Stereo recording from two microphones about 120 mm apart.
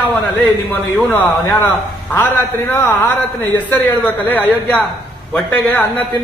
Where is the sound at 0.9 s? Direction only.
15° left (ahead or behind).